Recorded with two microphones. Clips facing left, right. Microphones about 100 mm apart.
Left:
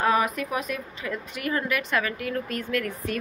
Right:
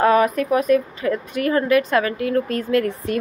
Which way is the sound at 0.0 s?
50° right (ahead or behind).